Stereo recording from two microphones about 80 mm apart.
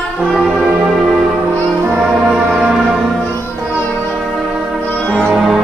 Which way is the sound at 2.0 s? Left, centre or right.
Centre.